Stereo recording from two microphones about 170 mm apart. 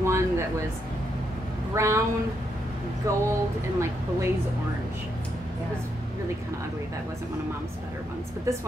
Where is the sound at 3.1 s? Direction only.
20° right (ahead or behind).